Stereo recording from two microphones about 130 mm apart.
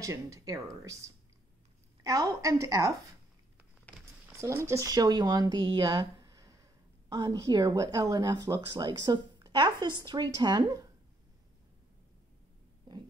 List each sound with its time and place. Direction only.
0.0 s a woman's voice: 25° right (ahead or behind)
4.3 s speech: 20° right (ahead or behind)